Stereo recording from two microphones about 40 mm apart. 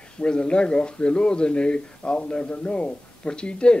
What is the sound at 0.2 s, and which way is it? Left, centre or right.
Speech, left.